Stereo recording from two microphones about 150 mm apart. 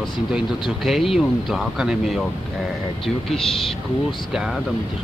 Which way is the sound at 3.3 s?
5° left (ahead or behind).